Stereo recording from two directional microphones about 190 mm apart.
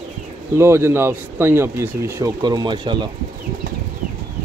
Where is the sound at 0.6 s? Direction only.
15° right (ahead or behind).